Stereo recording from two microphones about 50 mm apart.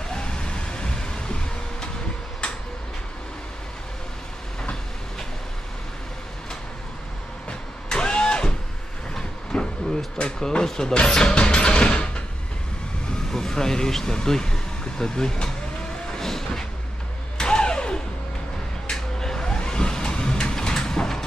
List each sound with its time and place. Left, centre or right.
0.1 s a sound: centre
7.9 s vehicle: centre
10.4 s speech: centre
13.3 s speech: centre
16.2 s a sound: centre
18.9 s vehicle: centre